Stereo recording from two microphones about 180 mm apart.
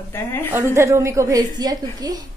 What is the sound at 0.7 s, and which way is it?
A woman's voice, 15° right (ahead or behind).